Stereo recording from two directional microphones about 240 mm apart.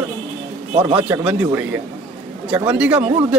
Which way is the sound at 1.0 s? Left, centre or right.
Centre.